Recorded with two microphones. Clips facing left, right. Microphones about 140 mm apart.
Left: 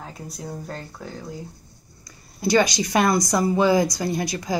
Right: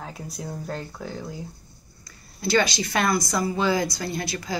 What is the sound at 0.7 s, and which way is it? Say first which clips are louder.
Speech: right 2 dB; centre (ahead or behind).